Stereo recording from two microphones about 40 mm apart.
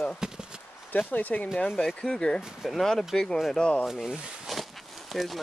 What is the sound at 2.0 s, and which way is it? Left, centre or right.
Speech, centre.